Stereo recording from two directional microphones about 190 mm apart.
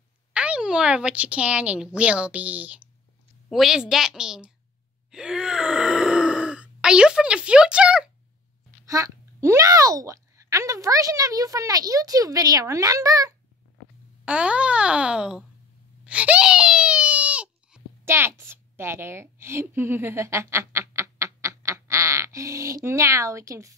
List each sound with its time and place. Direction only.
0.3 s a child's voice: 5° right (ahead or behind)
5.1 s groan: 5° right (ahead or behind)
8.8 s a child's voice: 15° right (ahead or behind)
14.2 s speech: 5° right (ahead or behind)
16.0 s wail: 5° right (ahead or behind)